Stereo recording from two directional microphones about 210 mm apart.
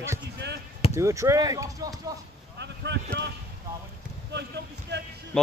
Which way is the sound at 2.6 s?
55° right (ahead or behind).